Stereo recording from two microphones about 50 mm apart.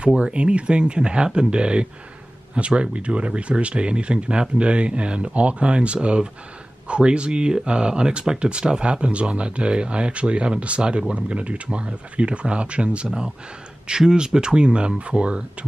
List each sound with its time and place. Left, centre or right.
0.0 s speech: right